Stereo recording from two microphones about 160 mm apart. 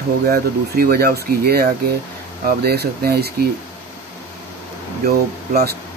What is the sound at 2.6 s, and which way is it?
Speech, 80° right.